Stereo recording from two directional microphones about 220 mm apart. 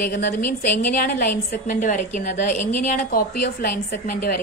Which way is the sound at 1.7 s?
35° left (ahead or behind).